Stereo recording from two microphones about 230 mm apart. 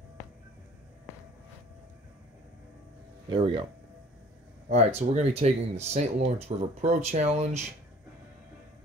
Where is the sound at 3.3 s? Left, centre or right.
Right.